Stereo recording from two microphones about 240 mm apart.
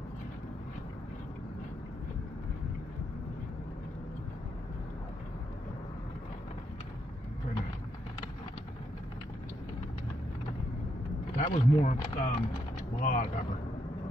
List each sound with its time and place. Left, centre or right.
11.3 s speech: left